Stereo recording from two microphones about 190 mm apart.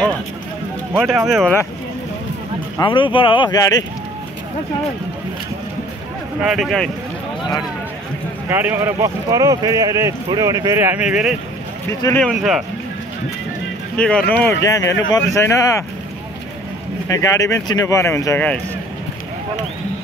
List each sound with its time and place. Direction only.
0.9 s speech: centre (ahead or behind)
2.8 s speech: 25° left (ahead or behind)
6.4 s speech: centre (ahead or behind)
8.5 s speech: 10° right (ahead or behind)
13.9 s speech: 5° left (ahead or behind)
17.1 s speech: 15° left (ahead or behind)